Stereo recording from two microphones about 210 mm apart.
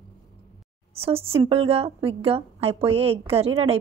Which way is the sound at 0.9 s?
25° right (ahead or behind).